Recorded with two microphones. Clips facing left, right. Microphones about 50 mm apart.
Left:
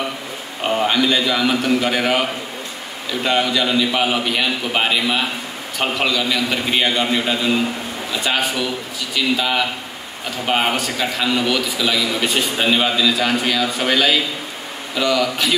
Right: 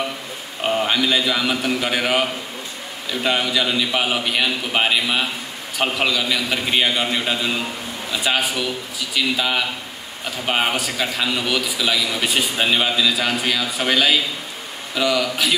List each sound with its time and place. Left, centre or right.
0.7 s a man's voice: centre
3.3 s a man's voice: centre